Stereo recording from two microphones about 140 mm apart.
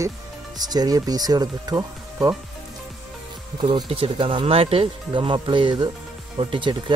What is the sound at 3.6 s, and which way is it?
Speech, 40° right (ahead or behind).